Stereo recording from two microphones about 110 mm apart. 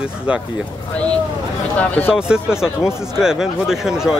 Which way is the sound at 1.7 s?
15° left (ahead or behind).